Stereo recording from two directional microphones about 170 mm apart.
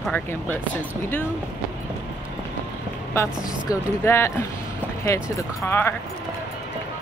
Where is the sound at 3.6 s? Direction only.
15° left (ahead or behind).